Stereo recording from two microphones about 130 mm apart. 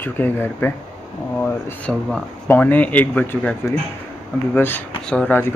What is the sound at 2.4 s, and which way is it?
A man's voice, 15° left (ahead or behind).